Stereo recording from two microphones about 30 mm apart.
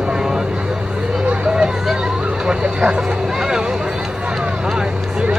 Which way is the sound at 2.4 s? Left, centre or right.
Right.